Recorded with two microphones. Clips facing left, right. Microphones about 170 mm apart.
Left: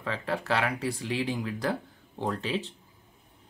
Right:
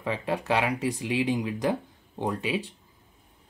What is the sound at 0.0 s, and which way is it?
Speech, 15° right (ahead or behind).